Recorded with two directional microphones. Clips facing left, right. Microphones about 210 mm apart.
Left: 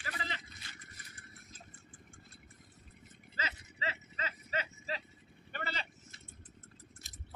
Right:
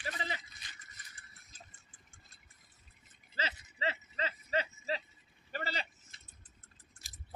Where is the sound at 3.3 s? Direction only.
35° right (ahead or behind).